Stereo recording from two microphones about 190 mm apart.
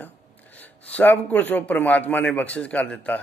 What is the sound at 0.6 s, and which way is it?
A man's voice, 10° left (ahead or behind).